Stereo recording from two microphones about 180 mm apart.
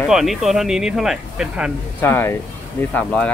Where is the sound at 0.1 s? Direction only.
Centre (ahead or behind).